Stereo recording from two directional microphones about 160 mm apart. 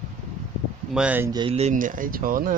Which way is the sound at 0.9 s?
10° right (ahead or behind).